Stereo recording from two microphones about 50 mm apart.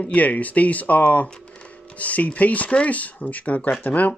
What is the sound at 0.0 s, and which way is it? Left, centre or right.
Speech, left.